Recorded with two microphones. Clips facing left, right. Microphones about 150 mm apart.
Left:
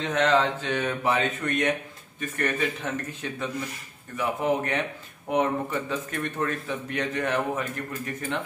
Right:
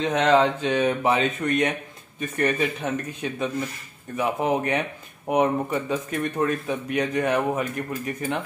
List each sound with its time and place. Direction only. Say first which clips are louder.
0.0 s a man's voice: right 4 dB; 20° right (ahead or behind)